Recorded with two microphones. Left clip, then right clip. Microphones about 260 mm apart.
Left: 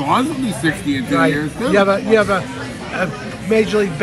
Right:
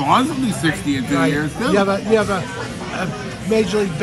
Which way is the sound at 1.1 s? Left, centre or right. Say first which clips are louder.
Left 3 dB; centre.